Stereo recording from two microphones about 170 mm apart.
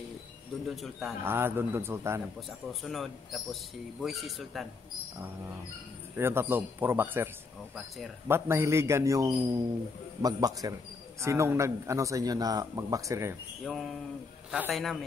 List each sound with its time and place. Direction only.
0.7 s speech: centre (ahead or behind)
1.2 s speech: 15° right (ahead or behind)
2.8 s speech: centre (ahead or behind)
6.1 s speech: 15° right (ahead or behind)
8.3 s a man's voice: 15° right (ahead or behind)
13.7 s speech: centre (ahead or behind)